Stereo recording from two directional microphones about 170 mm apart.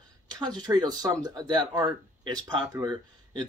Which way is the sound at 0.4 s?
25° right (ahead or behind).